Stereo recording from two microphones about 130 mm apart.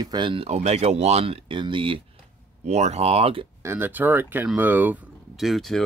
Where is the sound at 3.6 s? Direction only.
15° right (ahead or behind).